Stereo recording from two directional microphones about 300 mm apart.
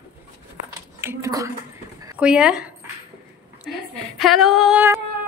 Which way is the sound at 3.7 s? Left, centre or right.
Centre.